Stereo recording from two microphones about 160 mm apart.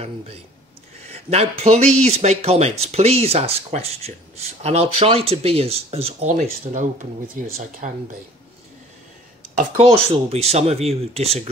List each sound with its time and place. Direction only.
1.1 s speech: 40° right (ahead or behind)
6.7 s speech: 50° right (ahead or behind)
9.8 s speech: 35° right (ahead or behind)